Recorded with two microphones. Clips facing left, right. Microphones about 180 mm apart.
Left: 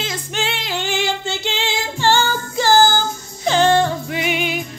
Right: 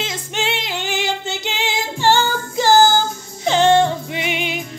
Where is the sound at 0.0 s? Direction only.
20° right (ahead or behind).